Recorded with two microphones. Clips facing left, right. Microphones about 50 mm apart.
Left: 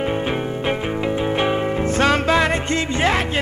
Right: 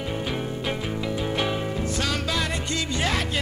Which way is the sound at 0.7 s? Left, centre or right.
Left.